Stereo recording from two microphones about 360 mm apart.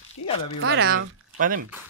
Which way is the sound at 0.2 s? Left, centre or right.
Left.